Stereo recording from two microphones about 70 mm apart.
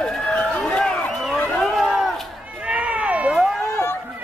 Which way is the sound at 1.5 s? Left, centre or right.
Centre.